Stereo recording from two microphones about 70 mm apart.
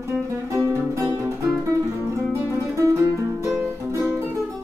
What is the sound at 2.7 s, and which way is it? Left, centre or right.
Music, right.